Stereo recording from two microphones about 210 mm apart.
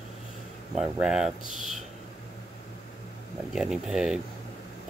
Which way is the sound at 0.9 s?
5° right (ahead or behind).